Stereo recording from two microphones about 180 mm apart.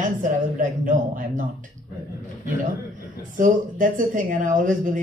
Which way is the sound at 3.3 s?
45° right (ahead or behind).